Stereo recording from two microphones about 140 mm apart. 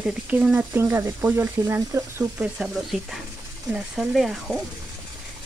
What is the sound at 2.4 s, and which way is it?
Speech, 5° right (ahead or behind).